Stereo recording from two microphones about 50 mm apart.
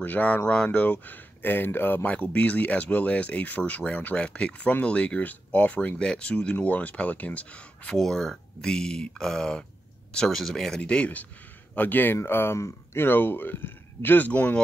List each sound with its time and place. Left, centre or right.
0.0 s speech: left
2.0 s speech: left
4.6 s speech: left
8.0 s speech: centre
10.8 s speech: left
11.7 s speech: left
12.3 s speech: left
13.0 s speech: left